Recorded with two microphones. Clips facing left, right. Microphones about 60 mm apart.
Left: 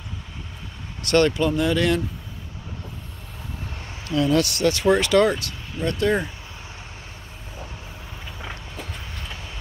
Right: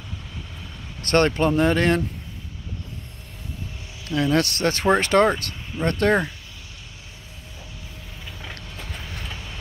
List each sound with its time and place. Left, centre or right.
1.0 s speech: right
4.1 s speech: right
5.9 s speech: right